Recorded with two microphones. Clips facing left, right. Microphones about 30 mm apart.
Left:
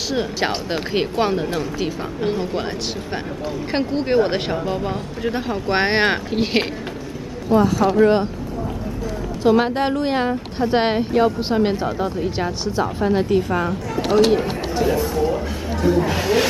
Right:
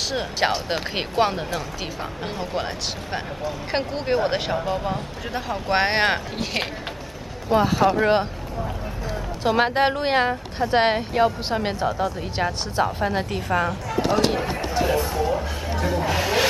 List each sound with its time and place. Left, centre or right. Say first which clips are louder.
0.1 s a woman's voice: left 2 dB; centre
3.7 s speech: left 5 dB; centre
6.3 s speech: left 7 dB; left
7.4 s speech: left 2 dB; right
9.4 s speech: left 2 dB; centre
10.6 s a woman's voice: left 1 dB; centre